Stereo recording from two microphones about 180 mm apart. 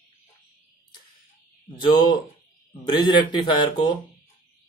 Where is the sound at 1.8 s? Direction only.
25° left (ahead or behind).